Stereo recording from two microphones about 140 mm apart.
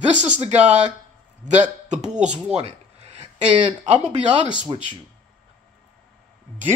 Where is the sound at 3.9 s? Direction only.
55° right (ahead or behind).